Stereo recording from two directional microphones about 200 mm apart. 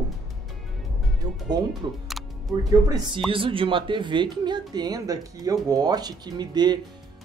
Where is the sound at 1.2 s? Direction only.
20° right (ahead or behind).